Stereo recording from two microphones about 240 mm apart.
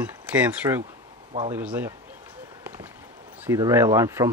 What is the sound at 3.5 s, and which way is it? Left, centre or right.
Speech, centre.